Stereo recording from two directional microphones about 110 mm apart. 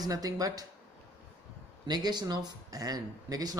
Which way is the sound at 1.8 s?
40° right (ahead or behind).